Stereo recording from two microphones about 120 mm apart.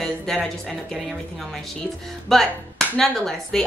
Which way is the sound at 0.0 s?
5° left (ahead or behind).